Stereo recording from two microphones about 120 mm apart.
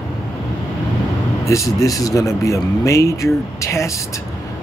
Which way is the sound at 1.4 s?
25° left (ahead or behind).